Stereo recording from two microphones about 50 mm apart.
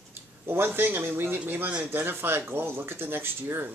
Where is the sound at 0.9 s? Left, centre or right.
Right.